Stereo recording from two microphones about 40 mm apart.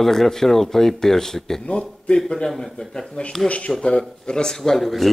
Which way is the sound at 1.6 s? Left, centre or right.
Left.